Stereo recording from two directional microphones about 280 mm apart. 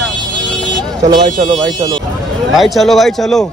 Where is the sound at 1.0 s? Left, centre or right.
Right.